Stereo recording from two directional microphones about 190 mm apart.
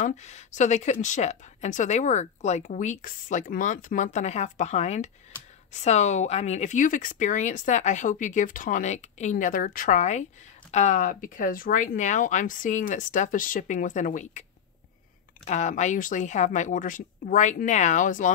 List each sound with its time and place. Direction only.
0.0 s a woman's voice: 35° left (ahead or behind)
15.4 s a woman's voice: 40° left (ahead or behind)